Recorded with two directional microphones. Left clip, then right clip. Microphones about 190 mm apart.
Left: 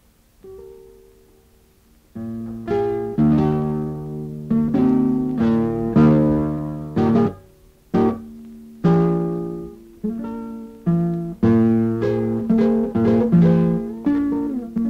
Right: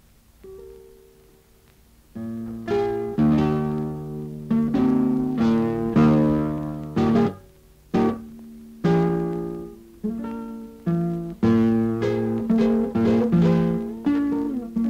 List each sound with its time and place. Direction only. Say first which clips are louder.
2.1 s music: left 2 dB; 35° left (ahead or behind)
8.8 s music: left 3 dB; 25° left (ahead or behind)
11.7 s music: left 3 dB; 35° left (ahead or behind)
12.3 s music: left 3 dB; 25° left (ahead or behind)